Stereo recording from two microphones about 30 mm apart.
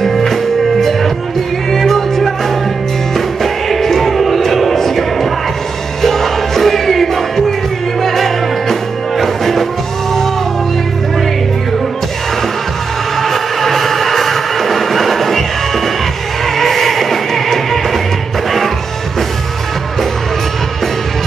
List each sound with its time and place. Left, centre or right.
0.0 s music: centre
3.4 s music: centre
13.2 s music: centre
16.5 s music: centre